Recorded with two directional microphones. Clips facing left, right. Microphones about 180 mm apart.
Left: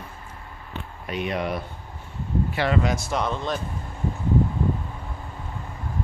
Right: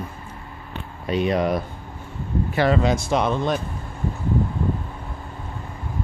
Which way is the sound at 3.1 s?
20° right (ahead or behind).